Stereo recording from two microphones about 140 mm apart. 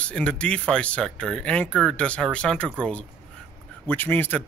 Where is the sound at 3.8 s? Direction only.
15° left (ahead or behind).